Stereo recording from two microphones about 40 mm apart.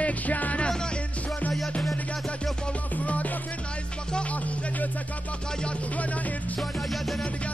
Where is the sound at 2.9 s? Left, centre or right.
Left.